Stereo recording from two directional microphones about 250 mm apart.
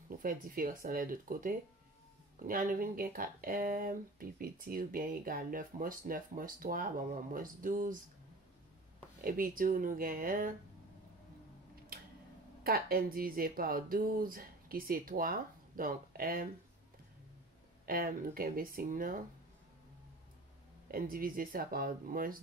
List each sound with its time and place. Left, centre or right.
0.2 s speech: right
9.2 s speech: right
12.6 s speech: right
17.8 s speech: right
20.9 s speech: right